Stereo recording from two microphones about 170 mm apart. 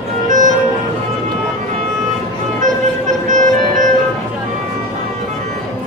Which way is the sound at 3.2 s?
45° right (ahead or behind).